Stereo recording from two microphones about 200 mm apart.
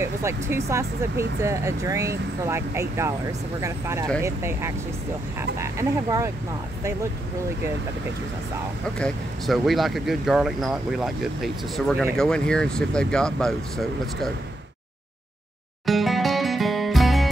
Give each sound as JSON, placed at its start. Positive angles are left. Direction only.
{"t": 0.0, "sound": "speech", "side_deg": -15}
{"t": 8.9, "sound": "speech", "side_deg": 0}
{"t": 15.8, "sound": "music", "side_deg": 0}